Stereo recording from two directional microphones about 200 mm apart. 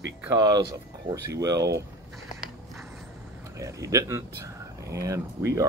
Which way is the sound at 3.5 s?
15° right (ahead or behind).